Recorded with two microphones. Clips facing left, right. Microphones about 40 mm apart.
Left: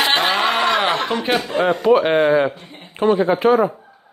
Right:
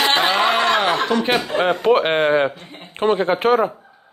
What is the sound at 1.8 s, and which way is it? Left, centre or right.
Speech, right.